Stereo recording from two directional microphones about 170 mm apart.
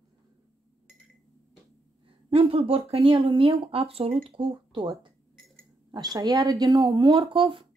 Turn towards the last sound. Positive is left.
turn(degrees=-30)  # may be behind; listen again after turning